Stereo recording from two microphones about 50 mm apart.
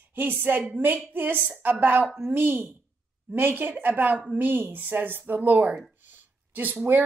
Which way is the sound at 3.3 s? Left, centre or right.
Right.